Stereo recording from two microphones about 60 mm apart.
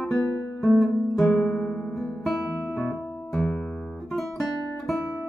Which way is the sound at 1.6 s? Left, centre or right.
Left.